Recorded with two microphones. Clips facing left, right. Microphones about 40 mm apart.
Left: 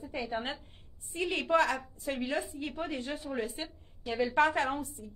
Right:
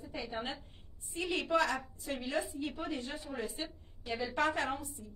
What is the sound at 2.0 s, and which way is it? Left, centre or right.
A woman's voice, left.